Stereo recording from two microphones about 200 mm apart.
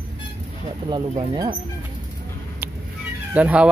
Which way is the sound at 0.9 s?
20° right (ahead or behind).